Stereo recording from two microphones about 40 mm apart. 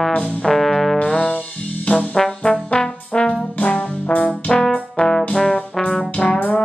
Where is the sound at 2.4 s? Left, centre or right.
Left.